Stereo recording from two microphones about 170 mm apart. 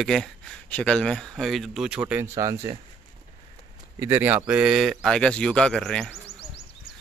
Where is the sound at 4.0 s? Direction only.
10° right (ahead or behind).